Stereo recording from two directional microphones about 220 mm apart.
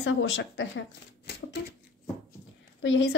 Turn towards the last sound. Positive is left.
turn(degrees=60)  # may be behind; listen again after turning